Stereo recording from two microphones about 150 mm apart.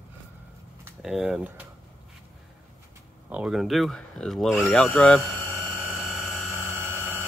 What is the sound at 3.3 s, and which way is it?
Speech, 5° right (ahead or behind).